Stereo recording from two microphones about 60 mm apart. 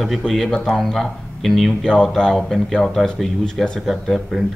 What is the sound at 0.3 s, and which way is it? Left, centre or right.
Speech, centre.